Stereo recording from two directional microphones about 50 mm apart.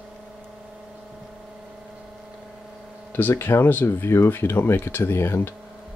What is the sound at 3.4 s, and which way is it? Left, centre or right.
Speech, left.